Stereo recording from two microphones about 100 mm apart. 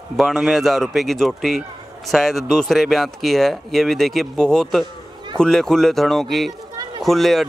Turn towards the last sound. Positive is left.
turn(degrees=0)  # may be behind; listen again after turning